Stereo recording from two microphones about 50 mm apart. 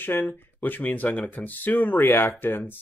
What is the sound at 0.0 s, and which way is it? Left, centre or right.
Speech, left.